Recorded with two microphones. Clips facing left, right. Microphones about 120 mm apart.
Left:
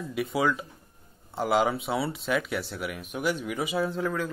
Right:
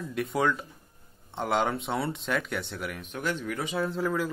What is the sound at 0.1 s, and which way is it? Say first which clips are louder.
Speech: left 1 dB; 5° left (ahead or behind).